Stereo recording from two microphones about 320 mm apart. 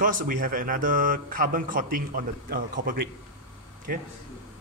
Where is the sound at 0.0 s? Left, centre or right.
Right.